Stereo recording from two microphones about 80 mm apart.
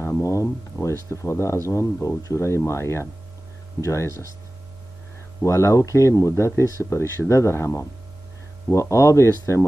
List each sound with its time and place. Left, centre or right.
0.0 s speech: left
5.4 s speech: left